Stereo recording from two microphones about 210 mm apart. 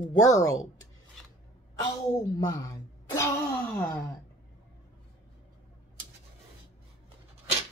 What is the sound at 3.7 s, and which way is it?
Speech, 10° left (ahead or behind).